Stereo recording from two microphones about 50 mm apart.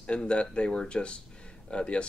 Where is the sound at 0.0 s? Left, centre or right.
Left.